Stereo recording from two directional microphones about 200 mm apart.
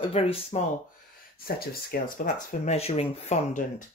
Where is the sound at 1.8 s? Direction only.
45° left (ahead or behind).